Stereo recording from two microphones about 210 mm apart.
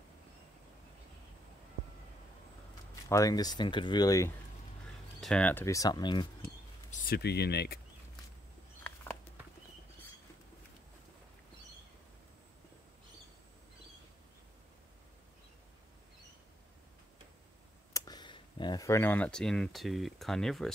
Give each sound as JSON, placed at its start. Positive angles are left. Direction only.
{"t": 3.1, "sound": "speech", "side_deg": 15}
{"t": 5.2, "sound": "speech", "side_deg": 5}
{"t": 6.9, "sound": "speech", "side_deg": 50}
{"t": 17.9, "sound": "speech", "side_deg": 20}